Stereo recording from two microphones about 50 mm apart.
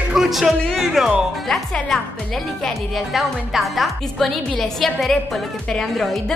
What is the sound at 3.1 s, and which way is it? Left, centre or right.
A woman's voice, centre.